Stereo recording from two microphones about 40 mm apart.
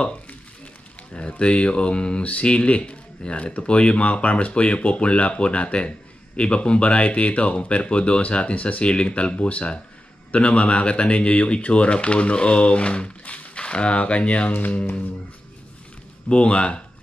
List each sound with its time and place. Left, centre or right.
1.4 s speech: left
13.2 s a sound: left
13.6 s speech: left
16.3 s speech: left